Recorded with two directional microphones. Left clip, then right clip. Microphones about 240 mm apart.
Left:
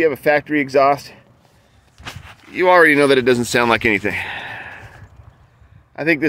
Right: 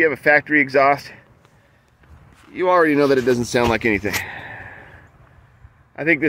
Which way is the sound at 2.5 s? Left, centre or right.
Centre.